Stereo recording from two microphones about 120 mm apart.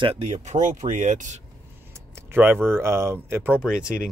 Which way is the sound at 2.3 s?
20° right (ahead or behind).